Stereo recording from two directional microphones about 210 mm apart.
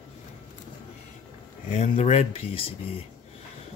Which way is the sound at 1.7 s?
30° left (ahead or behind).